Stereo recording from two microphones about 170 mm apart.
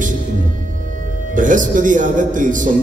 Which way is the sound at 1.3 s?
50° right (ahead or behind).